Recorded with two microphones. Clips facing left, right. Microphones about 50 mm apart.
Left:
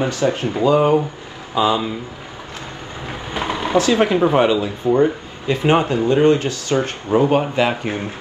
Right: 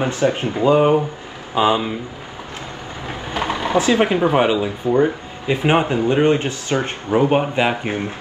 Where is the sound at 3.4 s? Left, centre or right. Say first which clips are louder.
Left 1 dB; right.